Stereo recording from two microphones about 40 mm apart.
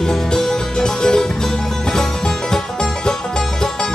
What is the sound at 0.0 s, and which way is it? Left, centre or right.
Music, centre.